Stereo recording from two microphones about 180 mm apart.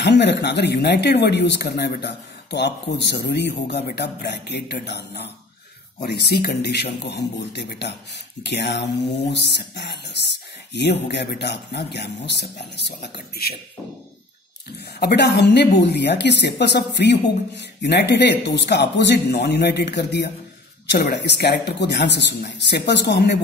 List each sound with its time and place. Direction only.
0.0 s a woman's voice: 70° left (ahead or behind)
15.0 s a woman's voice: 70° left (ahead or behind)